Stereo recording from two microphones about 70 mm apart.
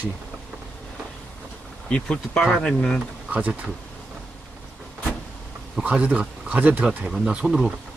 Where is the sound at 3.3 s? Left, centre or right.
Centre.